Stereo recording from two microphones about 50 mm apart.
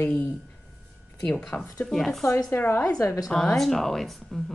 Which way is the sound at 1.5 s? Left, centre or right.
Left.